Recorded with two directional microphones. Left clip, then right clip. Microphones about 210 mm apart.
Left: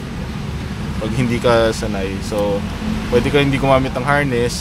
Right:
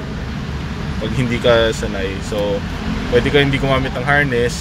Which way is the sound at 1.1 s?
20° left (ahead or behind).